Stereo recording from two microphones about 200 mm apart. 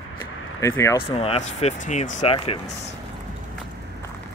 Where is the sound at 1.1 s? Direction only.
30° left (ahead or behind).